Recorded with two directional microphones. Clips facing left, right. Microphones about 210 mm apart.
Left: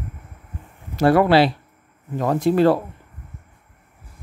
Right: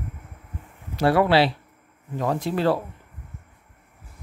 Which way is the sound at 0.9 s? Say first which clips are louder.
Left 4 dB; 45° left (ahead or behind).